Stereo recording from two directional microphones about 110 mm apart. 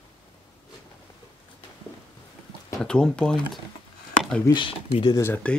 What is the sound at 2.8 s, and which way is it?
Speech, 10° left (ahead or behind).